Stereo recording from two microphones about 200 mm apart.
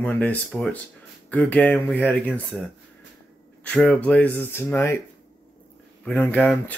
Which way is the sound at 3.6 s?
5° left (ahead or behind).